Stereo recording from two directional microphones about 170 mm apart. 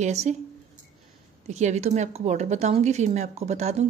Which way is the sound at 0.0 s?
40° right (ahead or behind).